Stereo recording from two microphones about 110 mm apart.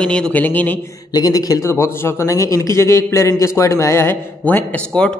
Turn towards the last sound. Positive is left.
turn(degrees=10)  # may be behind; listen again after turning